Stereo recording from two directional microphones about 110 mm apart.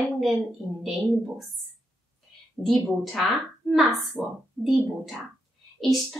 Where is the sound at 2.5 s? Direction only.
Centre (ahead or behind).